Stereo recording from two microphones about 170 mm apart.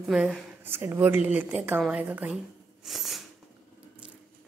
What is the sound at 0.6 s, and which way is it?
A woman's voice, 15° right (ahead or behind).